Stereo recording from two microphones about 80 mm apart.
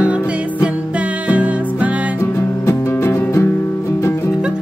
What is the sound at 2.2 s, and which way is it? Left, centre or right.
Music, left.